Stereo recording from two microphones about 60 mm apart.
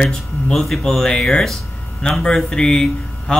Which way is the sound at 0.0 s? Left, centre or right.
Centre.